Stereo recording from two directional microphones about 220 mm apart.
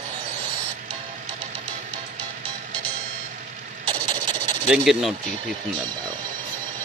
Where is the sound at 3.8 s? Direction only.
20° right (ahead or behind).